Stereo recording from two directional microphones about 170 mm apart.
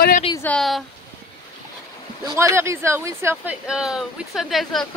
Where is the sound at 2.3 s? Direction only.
15° right (ahead or behind).